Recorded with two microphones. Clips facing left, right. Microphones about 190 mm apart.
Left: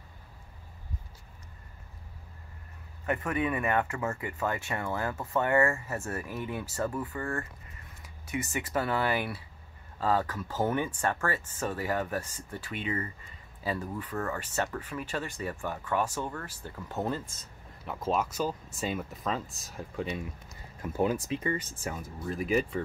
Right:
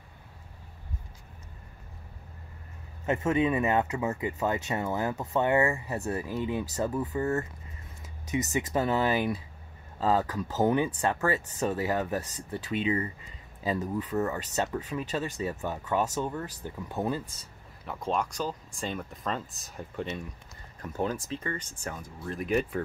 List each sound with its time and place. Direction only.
3.1 s speech: 25° right (ahead or behind)
8.5 s speech: 20° right (ahead or behind)
17.8 s speech: centre (ahead or behind)